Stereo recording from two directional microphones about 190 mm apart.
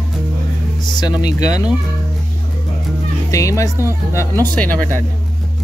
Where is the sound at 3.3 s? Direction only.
15° left (ahead or behind).